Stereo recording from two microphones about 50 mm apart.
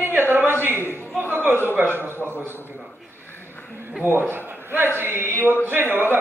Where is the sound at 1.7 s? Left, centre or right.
Right.